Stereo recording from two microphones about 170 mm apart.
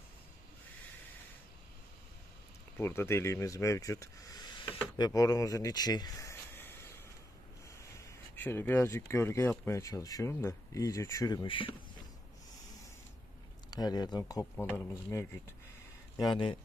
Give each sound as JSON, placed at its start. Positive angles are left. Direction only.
{"t": 2.8, "sound": "speech", "side_deg": 15}
{"t": 8.0, "sound": "speech", "side_deg": 15}
{"t": 13.7, "sound": "speech", "side_deg": 25}
{"t": 14.4, "sound": "speech", "side_deg": 10}
{"t": 16.2, "sound": "speech", "side_deg": 25}